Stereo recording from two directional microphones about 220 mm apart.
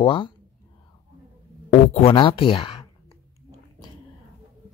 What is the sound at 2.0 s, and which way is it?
Speech, 25° left (ahead or behind).